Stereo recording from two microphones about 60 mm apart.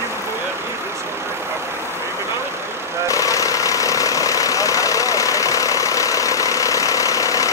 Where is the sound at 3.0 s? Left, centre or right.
Left.